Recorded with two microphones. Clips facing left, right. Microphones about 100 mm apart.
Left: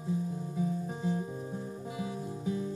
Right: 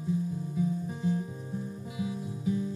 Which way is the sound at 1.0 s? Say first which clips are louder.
Right 2 dB; 30° left (ahead or behind).